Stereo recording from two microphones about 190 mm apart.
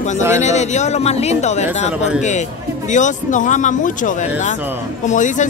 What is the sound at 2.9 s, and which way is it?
A man's voice, 40° left (ahead or behind).